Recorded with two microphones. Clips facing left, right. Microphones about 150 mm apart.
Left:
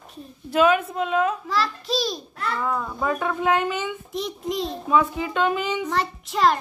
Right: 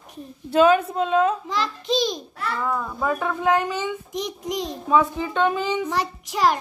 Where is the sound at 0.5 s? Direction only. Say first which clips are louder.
Right 2 dB; 30° right (ahead or behind).